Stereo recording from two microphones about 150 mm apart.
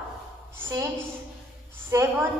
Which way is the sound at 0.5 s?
20° right (ahead or behind).